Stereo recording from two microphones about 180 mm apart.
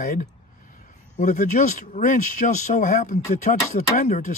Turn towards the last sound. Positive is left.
turn(degrees=45)  # may be behind; listen again after turning